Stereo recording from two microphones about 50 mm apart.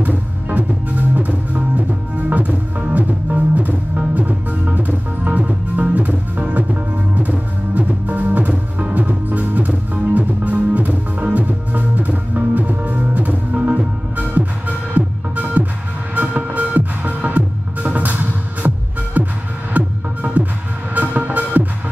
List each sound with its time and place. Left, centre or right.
0.0 s music: right